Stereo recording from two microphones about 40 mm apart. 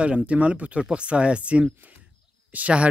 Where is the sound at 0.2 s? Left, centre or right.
Right.